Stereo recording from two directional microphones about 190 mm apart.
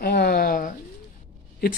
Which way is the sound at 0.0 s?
55° left (ahead or behind).